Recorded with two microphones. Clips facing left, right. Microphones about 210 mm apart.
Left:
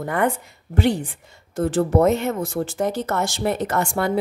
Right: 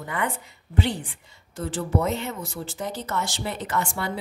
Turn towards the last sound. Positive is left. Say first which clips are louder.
# left 7 dB
turn(degrees=50)  # may be behind; listen again after turning